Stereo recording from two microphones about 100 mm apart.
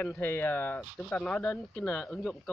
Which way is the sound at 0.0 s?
20° left (ahead or behind).